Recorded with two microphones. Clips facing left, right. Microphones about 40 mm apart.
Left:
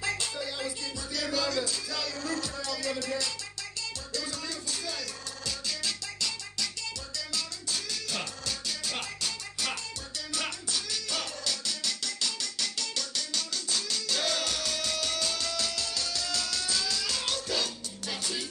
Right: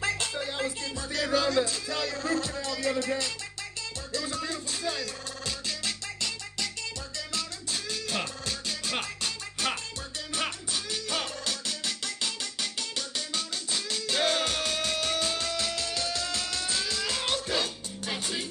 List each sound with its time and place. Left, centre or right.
0.0 s music: right